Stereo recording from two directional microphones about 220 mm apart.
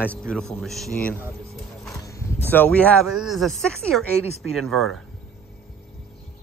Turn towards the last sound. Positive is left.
turn(degrees=0)  # may be behind; listen again after turning